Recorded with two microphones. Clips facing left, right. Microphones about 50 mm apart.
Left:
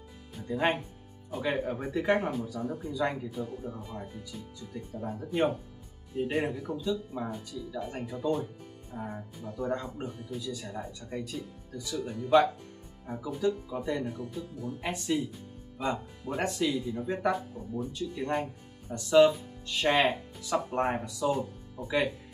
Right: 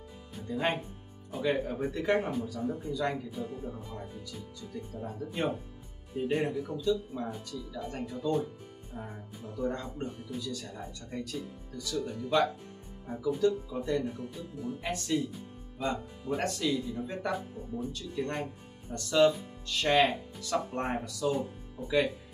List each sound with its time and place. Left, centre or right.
0.5 s speech: centre
16.4 s speech: centre
17.3 s speech: centre
17.9 s speech: centre
18.3 s speech: centre